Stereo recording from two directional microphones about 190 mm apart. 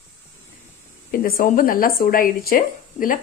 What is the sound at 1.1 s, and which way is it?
Speech, 50° left (ahead or behind).